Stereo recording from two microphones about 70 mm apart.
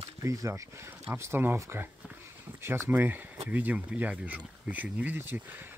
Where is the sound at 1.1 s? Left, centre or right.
Right.